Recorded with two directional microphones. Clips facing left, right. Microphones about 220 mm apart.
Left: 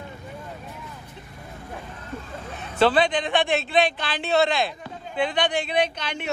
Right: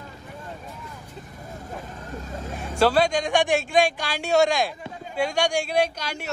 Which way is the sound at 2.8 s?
10° right (ahead or behind).